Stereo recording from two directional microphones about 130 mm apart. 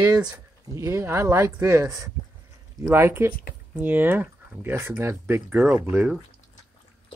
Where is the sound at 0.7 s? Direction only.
20° right (ahead or behind).